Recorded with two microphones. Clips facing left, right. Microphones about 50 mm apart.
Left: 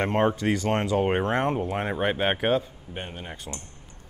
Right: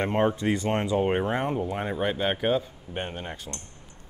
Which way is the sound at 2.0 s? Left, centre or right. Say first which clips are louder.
Left 2 dB; left.